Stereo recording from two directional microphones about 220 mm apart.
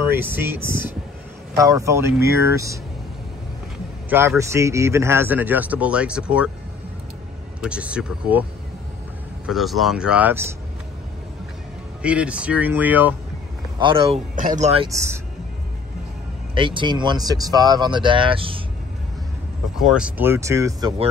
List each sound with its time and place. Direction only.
0.0 s speech: 10° right (ahead or behind)
4.1 s speech: 10° right (ahead or behind)
7.6 s speech: 5° right (ahead or behind)
9.5 s speech: centre (ahead or behind)
12.0 s speech: 5° right (ahead or behind)
13.7 s speech: 25° right (ahead or behind)
16.5 s speech: 20° right (ahead or behind)
19.8 s speech: 5° right (ahead or behind)